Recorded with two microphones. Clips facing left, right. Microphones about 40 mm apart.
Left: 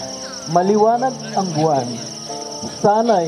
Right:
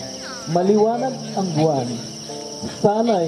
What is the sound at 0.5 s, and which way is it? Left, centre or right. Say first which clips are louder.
Speech: left 3 dB; centre.